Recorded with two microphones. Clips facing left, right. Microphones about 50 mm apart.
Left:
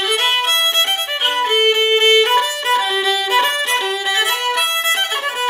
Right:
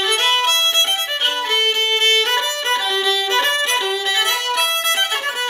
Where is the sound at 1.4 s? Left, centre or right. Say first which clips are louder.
Left 7 dB; centre.